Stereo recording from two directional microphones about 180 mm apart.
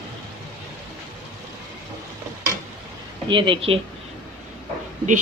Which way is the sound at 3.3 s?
25° right (ahead or behind).